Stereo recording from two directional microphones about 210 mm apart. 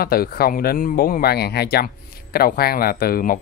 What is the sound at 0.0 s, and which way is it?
A man's voice, 45° left (ahead or behind).